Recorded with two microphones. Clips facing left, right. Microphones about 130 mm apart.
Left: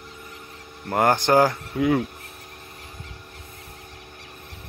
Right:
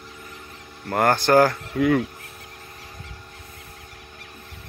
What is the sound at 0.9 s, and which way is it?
Speech, 15° left (ahead or behind).